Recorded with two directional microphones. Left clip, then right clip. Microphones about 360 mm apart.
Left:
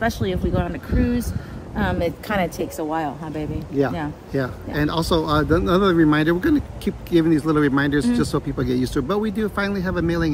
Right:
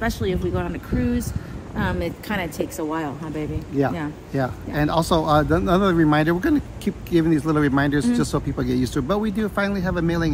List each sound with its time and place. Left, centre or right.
0.0 s a woman's voice: centre
3.7 s speech: centre